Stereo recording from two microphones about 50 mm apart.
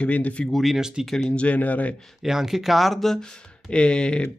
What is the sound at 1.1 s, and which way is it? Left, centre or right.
Speech, centre.